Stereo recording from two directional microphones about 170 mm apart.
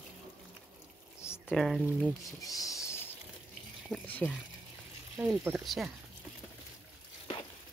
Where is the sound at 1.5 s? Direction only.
Centre (ahead or behind).